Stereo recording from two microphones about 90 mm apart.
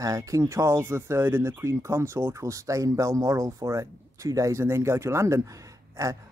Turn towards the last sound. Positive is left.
turn(degrees=-35)  # may be behind; listen again after turning